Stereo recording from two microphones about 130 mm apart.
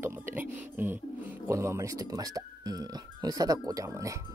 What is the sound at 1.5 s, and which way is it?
Speech, 20° right (ahead or behind).